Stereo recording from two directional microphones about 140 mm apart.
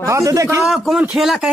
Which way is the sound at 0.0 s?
20° right (ahead or behind).